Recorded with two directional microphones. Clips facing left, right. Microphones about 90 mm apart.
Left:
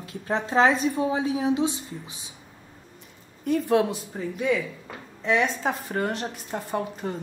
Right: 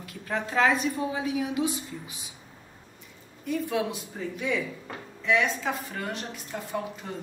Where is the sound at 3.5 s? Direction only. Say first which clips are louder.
Left 6 dB; 45° left (ahead or behind).